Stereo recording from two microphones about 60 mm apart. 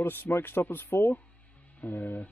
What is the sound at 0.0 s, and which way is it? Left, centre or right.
Speech, left.